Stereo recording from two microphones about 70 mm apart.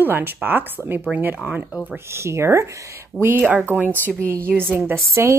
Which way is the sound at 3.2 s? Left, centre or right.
Right.